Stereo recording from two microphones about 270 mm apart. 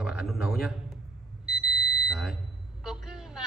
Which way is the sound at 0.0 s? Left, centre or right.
Centre.